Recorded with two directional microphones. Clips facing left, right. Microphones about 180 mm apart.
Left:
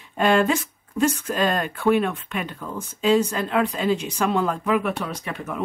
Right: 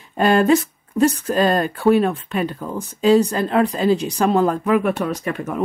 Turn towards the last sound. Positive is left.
turn(degrees=-45)  # may be behind; listen again after turning